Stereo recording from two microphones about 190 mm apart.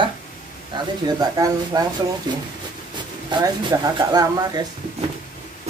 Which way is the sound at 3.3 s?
25° right (ahead or behind).